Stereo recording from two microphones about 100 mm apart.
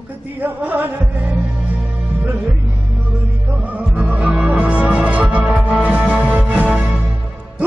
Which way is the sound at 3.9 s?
10° right (ahead or behind).